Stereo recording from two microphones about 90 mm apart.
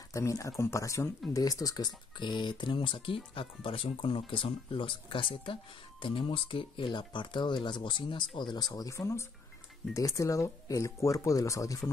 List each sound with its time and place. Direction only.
0.1 s speech: 35° left (ahead or behind)